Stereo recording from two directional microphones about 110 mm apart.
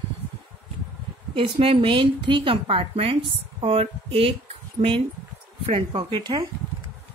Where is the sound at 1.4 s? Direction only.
55° right (ahead or behind).